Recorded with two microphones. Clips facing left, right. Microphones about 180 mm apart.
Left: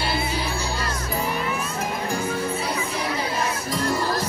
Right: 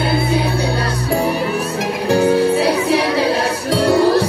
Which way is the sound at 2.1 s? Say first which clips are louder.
Right 17 dB; 75° right (ahead or behind).